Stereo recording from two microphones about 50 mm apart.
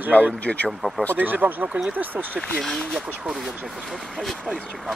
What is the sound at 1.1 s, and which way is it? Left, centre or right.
Speech, right.